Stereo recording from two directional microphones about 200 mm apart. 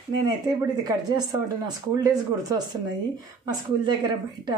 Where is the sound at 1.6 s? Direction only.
20° right (ahead or behind).